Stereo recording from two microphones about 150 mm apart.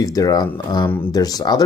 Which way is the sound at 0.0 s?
25° left (ahead or behind).